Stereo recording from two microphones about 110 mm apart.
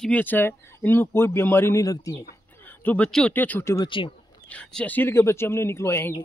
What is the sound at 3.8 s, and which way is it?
Speech, 50° left (ahead or behind).